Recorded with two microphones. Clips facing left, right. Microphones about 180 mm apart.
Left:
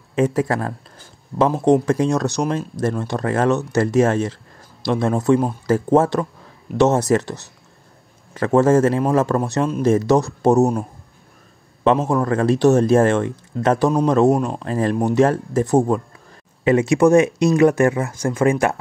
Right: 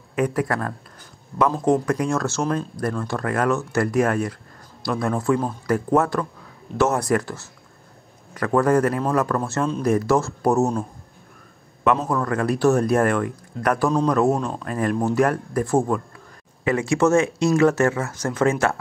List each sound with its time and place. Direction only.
0.1 s speech: 25° left (ahead or behind)